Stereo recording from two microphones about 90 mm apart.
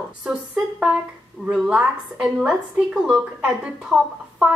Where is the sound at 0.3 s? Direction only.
15° right (ahead or behind).